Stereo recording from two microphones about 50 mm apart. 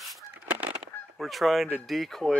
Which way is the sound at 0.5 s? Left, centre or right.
Right.